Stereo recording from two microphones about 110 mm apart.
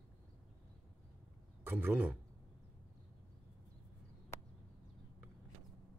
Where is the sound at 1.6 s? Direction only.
20° right (ahead or behind).